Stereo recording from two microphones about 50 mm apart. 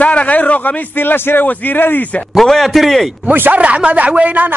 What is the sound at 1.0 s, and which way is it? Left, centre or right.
A man's voice, left.